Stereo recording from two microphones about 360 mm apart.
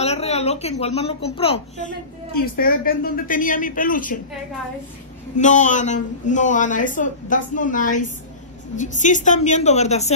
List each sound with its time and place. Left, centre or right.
0.0 s a woman's voice: centre
5.4 s a woman's voice: centre